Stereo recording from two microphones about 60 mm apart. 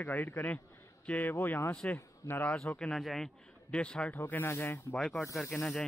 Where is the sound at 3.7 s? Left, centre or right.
Centre.